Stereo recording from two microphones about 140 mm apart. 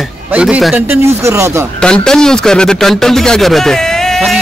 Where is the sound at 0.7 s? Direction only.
20° right (ahead or behind).